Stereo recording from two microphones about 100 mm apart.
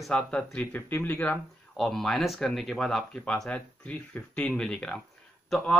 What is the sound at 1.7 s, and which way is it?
Speech, 5° left (ahead or behind).